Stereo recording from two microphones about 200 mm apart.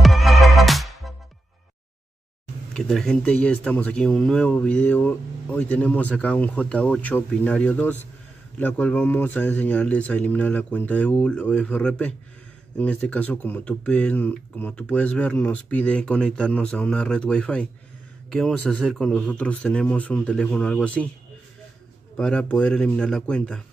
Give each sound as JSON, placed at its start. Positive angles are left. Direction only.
{"t": 0.0, "sound": "music", "side_deg": 0}
{"t": 2.7, "sound": "a man's voice", "side_deg": 5}
{"t": 22.1, "sound": "a man's voice", "side_deg": 5}